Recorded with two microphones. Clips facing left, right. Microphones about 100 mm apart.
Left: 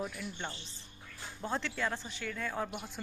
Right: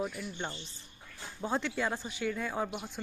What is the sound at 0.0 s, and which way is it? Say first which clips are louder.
Speech: right 3 dB; 10° right (ahead or behind).